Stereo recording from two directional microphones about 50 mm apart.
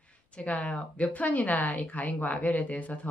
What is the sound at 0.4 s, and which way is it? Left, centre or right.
A woman's voice, left.